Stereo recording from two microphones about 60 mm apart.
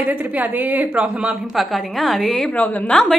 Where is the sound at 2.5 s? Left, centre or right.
Left.